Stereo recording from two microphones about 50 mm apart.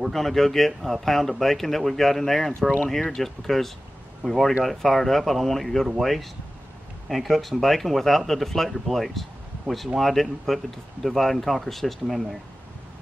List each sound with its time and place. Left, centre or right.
0.1 s speech: centre